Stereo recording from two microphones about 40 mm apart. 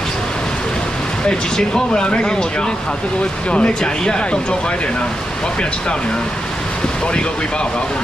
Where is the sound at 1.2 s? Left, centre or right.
Centre.